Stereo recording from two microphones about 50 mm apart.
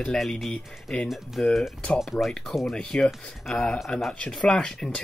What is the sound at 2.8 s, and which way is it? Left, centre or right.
Speech, centre.